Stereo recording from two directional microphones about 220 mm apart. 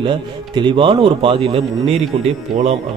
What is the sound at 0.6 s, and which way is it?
Speech, 20° right (ahead or behind).